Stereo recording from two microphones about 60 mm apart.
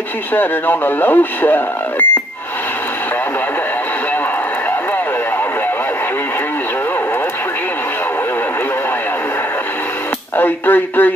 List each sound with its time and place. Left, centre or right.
0.3 s speech: left
10.3 s speech: left